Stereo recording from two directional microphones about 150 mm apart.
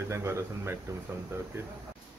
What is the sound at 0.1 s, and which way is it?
Speech, 20° right (ahead or behind).